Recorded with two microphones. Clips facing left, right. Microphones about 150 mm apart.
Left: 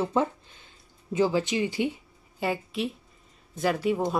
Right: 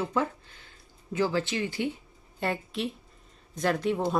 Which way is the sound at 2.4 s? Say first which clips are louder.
Left 2 dB; centre (ahead or behind).